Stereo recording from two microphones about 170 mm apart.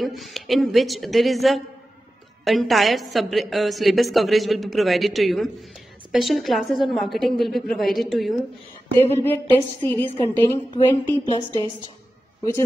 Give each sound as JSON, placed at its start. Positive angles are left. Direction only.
{"t": 0.0, "sound": "a woman's voice", "side_deg": 0}
{"t": 9.2, "sound": "a sound", "side_deg": 10}
{"t": 10.0, "sound": "a woman's voice", "side_deg": 35}